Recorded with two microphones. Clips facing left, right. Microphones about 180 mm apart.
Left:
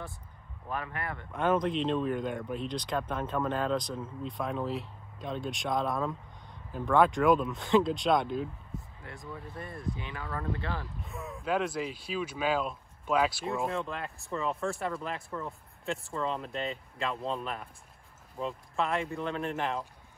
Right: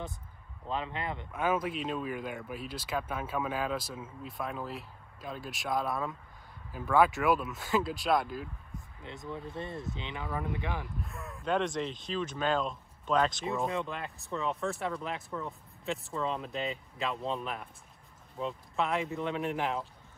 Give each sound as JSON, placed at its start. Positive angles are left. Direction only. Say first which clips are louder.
{"t": 0.7, "sound": "speech", "louder": "right 1 dB", "side_deg": -20}
{"t": 1.3, "sound": "speech", "louder": "left 4 dB", "side_deg": -5}
{"t": 9.0, "sound": "speech", "louder": "right 7 dB", "side_deg": -20}
{"t": 11.0, "sound": "speech", "louder": "left 2 dB", "side_deg": 0}